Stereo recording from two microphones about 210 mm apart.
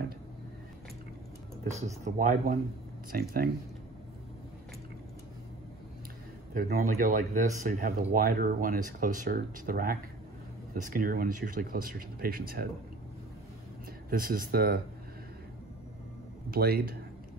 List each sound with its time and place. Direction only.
2.0 s speech: 40° right (ahead or behind)
6.5 s speech: 40° right (ahead or behind)
14.1 s speech: 40° right (ahead or behind)
16.4 s speech: 45° right (ahead or behind)